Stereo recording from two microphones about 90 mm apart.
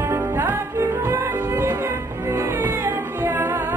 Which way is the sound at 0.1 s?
30° right (ahead or behind).